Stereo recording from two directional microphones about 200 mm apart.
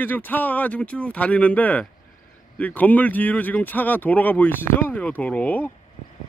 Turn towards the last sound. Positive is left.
turn(degrees=10)  # may be behind; listen again after turning